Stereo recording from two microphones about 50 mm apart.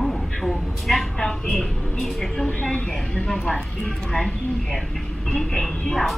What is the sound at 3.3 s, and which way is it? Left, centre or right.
A woman's voice, centre.